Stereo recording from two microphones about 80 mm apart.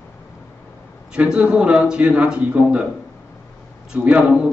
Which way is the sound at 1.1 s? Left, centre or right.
Centre.